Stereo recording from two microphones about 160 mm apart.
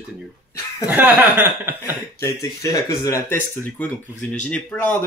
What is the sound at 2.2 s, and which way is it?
Speech, 20° left (ahead or behind).